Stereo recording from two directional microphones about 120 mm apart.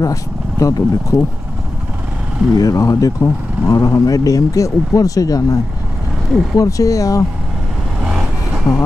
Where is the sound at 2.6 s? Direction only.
25° left (ahead or behind).